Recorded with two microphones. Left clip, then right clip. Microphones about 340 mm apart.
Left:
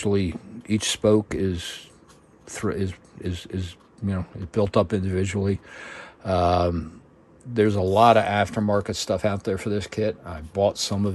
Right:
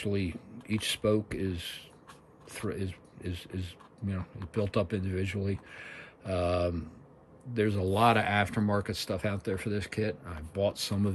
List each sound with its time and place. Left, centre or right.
0.0 s speech: centre